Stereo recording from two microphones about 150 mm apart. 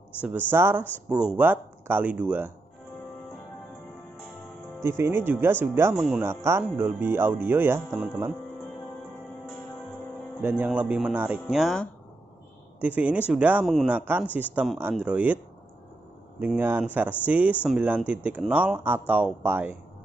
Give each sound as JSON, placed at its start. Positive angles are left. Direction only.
{"t": 0.5, "sound": "speech", "side_deg": -15}
{"t": 4.7, "sound": "speech", "side_deg": -15}
{"t": 10.4, "sound": "speech", "side_deg": -10}
{"t": 11.5, "sound": "speech", "side_deg": 0}
{"t": 12.8, "sound": "speech", "side_deg": -10}
{"t": 13.7, "sound": "speech", "side_deg": 0}
{"t": 13.9, "sound": "speech", "side_deg": -15}
{"t": 16.3, "sound": "speech", "side_deg": -10}